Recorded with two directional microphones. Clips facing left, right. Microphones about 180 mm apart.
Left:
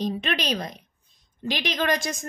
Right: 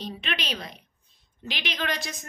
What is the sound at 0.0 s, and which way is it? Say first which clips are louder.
A woman's voice: left 7 dB; 40° left (ahead or behind).